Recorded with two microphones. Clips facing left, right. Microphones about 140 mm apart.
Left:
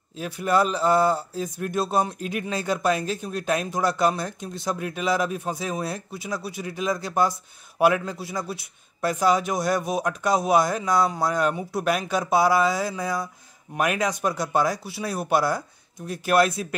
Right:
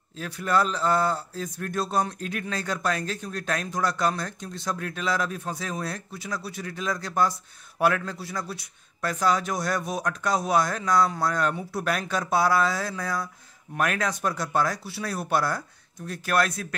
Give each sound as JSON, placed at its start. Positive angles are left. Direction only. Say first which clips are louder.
{"t": 0.2, "sound": "speech", "louder": "left 3 dB", "side_deg": 15}